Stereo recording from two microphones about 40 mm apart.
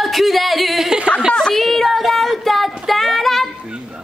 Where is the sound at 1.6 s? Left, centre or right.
Centre.